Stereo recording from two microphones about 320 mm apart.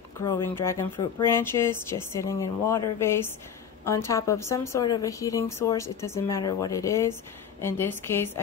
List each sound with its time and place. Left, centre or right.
0.2 s speech: centre